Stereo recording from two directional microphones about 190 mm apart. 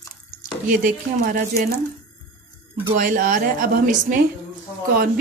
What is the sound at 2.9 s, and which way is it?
Speech, 45° right (ahead or behind).